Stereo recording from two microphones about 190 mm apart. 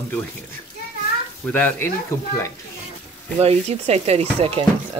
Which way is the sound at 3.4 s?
35° right (ahead or behind).